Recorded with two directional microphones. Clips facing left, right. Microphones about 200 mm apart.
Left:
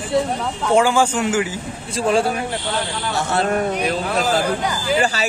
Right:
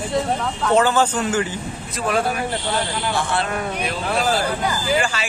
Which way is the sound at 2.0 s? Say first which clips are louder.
Left 4 dB; 30° left (ahead or behind).